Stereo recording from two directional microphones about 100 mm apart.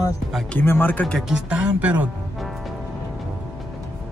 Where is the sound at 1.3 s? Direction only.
10° right (ahead or behind).